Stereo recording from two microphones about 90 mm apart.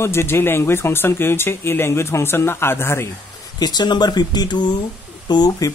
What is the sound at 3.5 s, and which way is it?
Speech, 50° left (ahead or behind).